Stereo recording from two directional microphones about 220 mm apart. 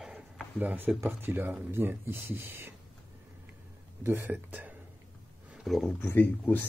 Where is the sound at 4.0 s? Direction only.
10° right (ahead or behind).